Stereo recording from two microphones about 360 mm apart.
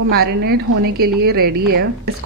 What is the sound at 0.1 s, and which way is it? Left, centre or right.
A woman's voice, right.